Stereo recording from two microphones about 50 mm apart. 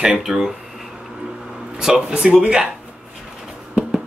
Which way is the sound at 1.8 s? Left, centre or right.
Centre.